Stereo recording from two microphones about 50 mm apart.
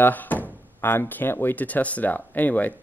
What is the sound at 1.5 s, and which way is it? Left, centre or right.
Speech, left.